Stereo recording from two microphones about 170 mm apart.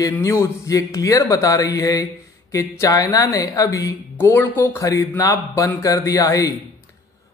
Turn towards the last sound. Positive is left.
turn(degrees=20)  # may be behind; listen again after turning